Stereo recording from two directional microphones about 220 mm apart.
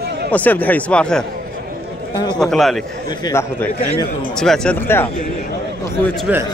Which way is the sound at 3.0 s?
20° left (ahead or behind).